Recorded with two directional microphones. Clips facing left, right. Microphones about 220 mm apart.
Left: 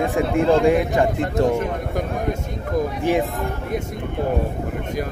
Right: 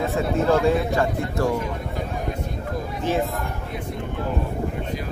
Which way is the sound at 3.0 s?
15° left (ahead or behind).